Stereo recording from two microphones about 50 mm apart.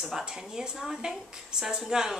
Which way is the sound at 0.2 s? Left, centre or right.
Centre.